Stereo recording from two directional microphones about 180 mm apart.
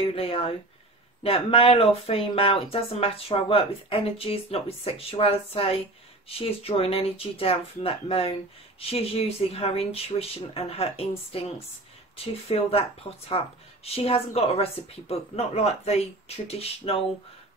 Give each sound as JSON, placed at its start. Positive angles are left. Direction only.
{"t": 0.1, "sound": "speech", "side_deg": 30}
{"t": 12.5, "sound": "speech", "side_deg": 35}